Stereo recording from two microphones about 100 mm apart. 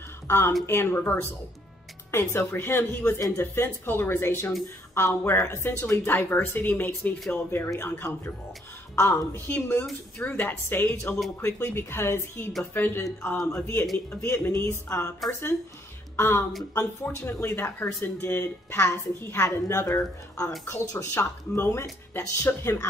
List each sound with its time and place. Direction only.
0.3 s a woman's voice: 25° left (ahead or behind)
3.2 s speech: 35° left (ahead or behind)
3.5 s a woman's voice: 25° left (ahead or behind)
16.2 s a woman's voice: 25° left (ahead or behind)
20.6 s a woman's voice: 25° left (ahead or behind)